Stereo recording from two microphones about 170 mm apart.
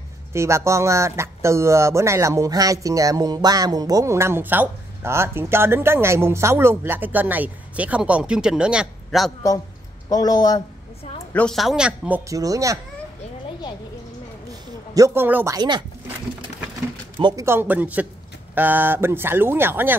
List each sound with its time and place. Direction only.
0.3 s speech: 15° right (ahead or behind)
10.0 s speech: 20° left (ahead or behind)
11.3 s speech: centre (ahead or behind)
12.3 s a child's voice: 20° right (ahead or behind)
15.0 s speech: 15° right (ahead or behind)
15.5 s a child's voice: 25° right (ahead or behind)
17.2 s a child's voice: 25° right (ahead or behind)
17.5 s speech: 10° right (ahead or behind)